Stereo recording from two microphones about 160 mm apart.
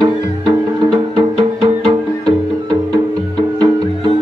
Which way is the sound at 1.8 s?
25° right (ahead or behind).